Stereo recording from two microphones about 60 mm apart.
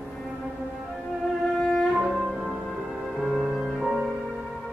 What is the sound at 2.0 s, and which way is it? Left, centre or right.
Music, centre.